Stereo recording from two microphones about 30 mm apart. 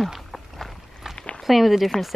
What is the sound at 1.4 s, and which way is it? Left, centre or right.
Speech, centre.